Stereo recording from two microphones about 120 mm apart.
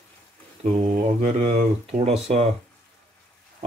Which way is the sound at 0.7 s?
70° right (ahead or behind).